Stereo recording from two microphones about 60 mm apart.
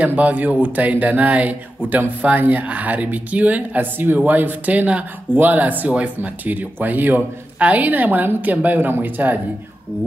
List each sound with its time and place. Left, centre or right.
0.0 s speech: right